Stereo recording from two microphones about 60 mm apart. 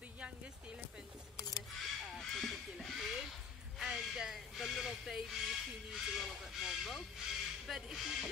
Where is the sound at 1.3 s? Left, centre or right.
Left.